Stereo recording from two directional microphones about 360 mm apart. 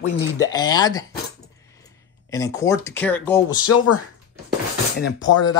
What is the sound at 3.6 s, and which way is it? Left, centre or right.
Speech, left.